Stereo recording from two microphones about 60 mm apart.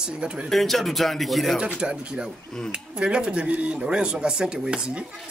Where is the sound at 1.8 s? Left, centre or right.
Centre.